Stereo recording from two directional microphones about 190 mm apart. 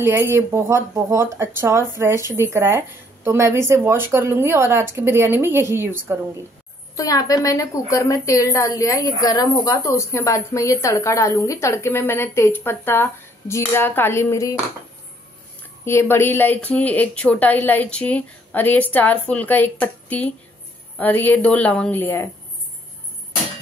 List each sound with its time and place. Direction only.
0.0 s a woman's voice: 15° right (ahead or behind)
7.0 s a woman's voice: 20° left (ahead or behind)
15.8 s a woman's voice: 15° left (ahead or behind)